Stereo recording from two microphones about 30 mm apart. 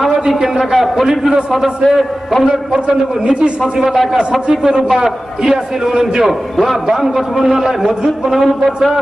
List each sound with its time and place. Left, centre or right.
0.4 s a man's voice: centre
2.7 s a man's voice: right
6.2 s a man's voice: centre